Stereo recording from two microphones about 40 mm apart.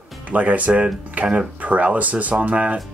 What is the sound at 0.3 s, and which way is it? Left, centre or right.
Speech, right.